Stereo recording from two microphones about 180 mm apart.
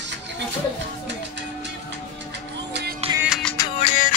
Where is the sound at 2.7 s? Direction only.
65° right (ahead or behind).